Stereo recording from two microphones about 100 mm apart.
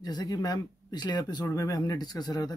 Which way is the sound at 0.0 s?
40° left (ahead or behind).